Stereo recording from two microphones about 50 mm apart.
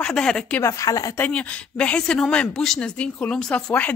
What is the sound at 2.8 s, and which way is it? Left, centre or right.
Speech, centre.